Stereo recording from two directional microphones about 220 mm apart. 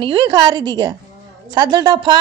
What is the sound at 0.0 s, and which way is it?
A woman's voice, 20° right (ahead or behind).